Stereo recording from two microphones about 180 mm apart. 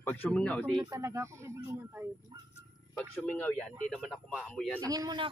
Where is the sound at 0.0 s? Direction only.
10° left (ahead or behind).